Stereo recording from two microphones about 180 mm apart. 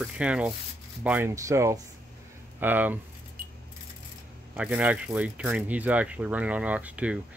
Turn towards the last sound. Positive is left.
turn(degrees=-5)  # may be behind; listen again after turning